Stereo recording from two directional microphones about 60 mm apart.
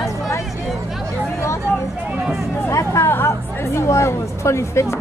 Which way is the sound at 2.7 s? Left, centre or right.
Left.